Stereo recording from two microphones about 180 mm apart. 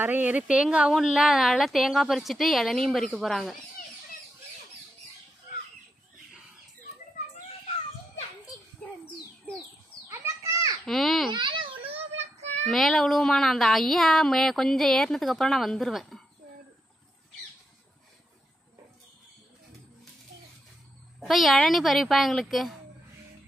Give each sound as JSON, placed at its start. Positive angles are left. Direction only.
{"t": 0.0, "sound": "speech", "side_deg": -10}
{"t": 10.0, "sound": "children playing", "side_deg": -15}
{"t": 10.9, "sound": "speech", "side_deg": 0}
{"t": 11.3, "sound": "babbling", "side_deg": -25}
{"t": 11.9, "sound": "child singing", "side_deg": -35}
{"t": 12.6, "sound": "speech", "side_deg": 0}
{"t": 21.2, "sound": "speech", "side_deg": 0}